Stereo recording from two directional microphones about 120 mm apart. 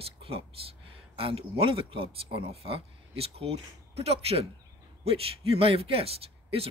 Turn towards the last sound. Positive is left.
turn(degrees=-55)  # may be behind; listen again after turning